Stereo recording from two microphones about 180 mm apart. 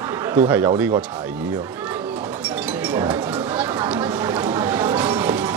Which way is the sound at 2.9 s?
10° right (ahead or behind).